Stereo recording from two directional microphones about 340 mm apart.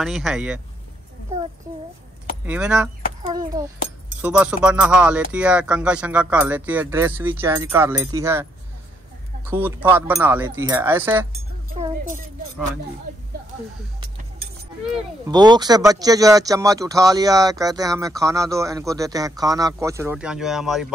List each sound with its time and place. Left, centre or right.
0.0 s speech: centre
2.4 s speech: centre
3.2 s speech: centre
15.2 s speech: centre